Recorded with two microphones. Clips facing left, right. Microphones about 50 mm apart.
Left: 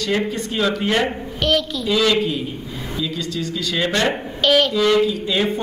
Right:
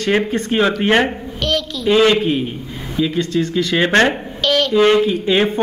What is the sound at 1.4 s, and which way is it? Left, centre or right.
Speech, centre.